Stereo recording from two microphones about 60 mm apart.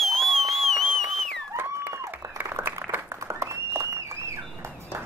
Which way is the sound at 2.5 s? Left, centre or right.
Right.